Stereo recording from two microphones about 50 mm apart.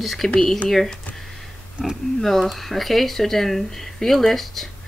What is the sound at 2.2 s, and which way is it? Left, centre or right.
Speech, centre.